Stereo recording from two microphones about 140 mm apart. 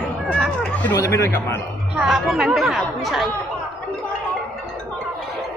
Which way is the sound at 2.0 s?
5° right (ahead or behind).